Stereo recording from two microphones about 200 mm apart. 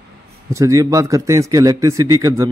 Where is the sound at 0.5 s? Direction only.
15° right (ahead or behind).